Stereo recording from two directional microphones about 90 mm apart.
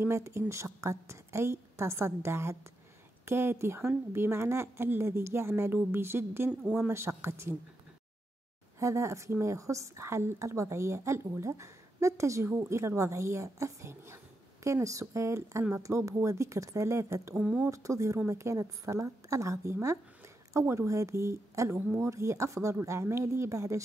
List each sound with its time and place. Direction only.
0.0 s a woman's voice: 30° right (ahead or behind)
6.6 s speech: 5° right (ahead or behind)
6.9 s speech: 30° right (ahead or behind)
8.7 s a woman's voice: 35° right (ahead or behind)
17.4 s speech: 10° right (ahead or behind)
17.6 s a woman's voice: 35° right (ahead or behind)
21.7 s speech: 20° right (ahead or behind)
22.0 s a woman's voice: 35° right (ahead or behind)